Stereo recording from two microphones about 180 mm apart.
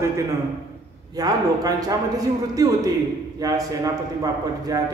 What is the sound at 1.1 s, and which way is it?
A man's voice, 20° right (ahead or behind).